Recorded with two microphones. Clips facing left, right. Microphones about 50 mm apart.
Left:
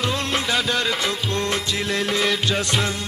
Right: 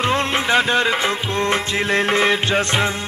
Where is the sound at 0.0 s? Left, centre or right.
Right.